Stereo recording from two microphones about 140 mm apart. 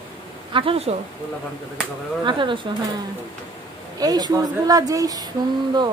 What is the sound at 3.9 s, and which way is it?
A woman's voice, 30° right (ahead or behind).